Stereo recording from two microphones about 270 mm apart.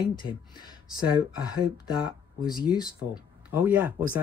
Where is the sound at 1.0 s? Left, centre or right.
Centre.